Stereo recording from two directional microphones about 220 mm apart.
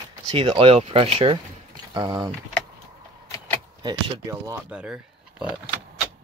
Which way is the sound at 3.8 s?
20° right (ahead or behind).